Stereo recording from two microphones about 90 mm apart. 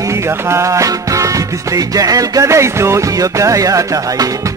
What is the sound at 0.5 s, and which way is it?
Music, 35° right (ahead or behind).